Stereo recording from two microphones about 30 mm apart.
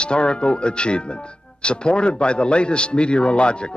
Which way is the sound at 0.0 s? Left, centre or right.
Left.